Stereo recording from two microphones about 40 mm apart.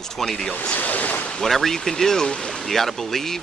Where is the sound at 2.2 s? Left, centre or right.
Left.